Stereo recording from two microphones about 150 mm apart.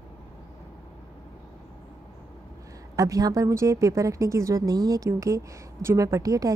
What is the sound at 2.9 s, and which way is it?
A woman's voice, 25° right (ahead or behind).